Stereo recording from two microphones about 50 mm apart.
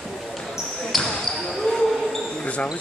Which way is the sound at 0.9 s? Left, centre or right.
Centre.